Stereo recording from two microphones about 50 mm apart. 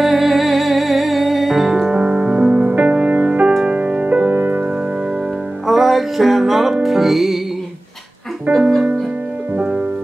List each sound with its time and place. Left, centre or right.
0.0 s music: centre
1.7 s music: centre
4.3 s music: right
5.7 s music: centre
8.5 s music: right